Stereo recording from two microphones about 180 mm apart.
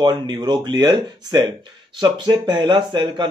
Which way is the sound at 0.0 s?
25° right (ahead or behind).